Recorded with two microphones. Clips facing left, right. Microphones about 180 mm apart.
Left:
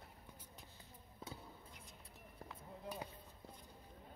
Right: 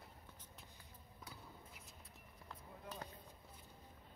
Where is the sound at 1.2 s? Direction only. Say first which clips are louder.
Left 6 dB; 30° left (ahead or behind).